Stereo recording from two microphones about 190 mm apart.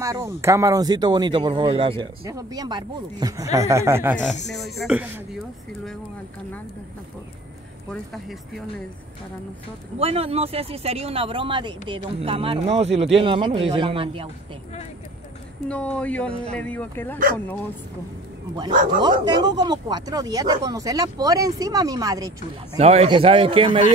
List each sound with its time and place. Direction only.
0.0 s speech: 15° right (ahead or behind)
4.5 s speech: centre (ahead or behind)
7.9 s speech: centre (ahead or behind)
9.9 s speech: 30° right (ahead or behind)
15.7 s speech: 5° left (ahead or behind)
18.9 s speech: 25° right (ahead or behind)
22.8 s speech: 35° right (ahead or behind)